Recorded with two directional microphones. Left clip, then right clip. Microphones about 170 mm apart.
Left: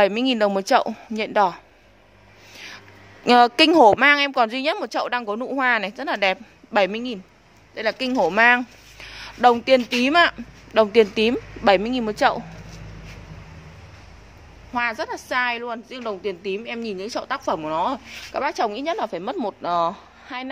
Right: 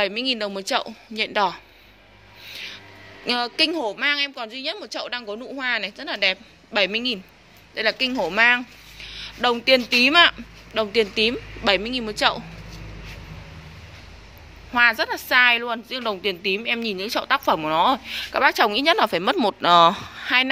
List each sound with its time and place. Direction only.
0.0 s a woman's voice: 30° left (ahead or behind)
1.1 s a woman's voice: 20° left (ahead or behind)
2.5 s a sound: 30° left (ahead or behind)
3.3 s a woman's voice: 40° left (ahead or behind); by 10.3 s 20° left (ahead or behind)
10.7 s a woman's voice: 30° left (ahead or behind)
14.7 s speech: centre (ahead or behind)